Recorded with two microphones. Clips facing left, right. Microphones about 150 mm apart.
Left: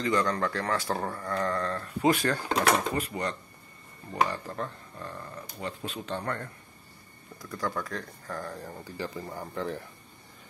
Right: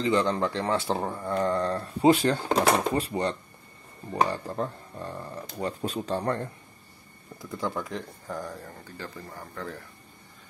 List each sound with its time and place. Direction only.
0.0 s speech: 25° right (ahead or behind)
1.4 s speech: 30° right (ahead or behind); by 8.5 s 15° right (ahead or behind)
8.9 s speech: 15° left (ahead or behind)